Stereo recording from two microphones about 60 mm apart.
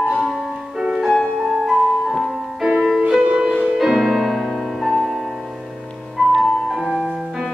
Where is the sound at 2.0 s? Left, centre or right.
Centre.